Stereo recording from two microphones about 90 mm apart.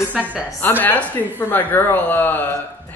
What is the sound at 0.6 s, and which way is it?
Speech, 20° left (ahead or behind).